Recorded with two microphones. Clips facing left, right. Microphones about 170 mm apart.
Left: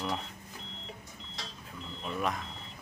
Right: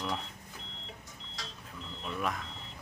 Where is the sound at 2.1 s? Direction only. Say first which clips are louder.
Left 2 dB; centre (ahead or behind).